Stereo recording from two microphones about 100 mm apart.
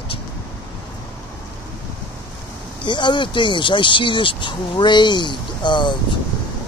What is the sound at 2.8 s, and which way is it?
Speech, 50° left (ahead or behind).